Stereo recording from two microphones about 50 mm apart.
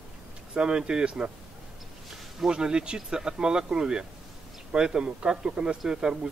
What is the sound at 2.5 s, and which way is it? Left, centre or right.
A man's voice, centre.